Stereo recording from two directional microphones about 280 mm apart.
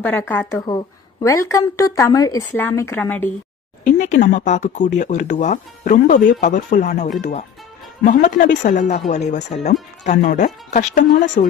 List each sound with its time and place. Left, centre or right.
0.0 s a woman's voice: centre
3.8 s speech: left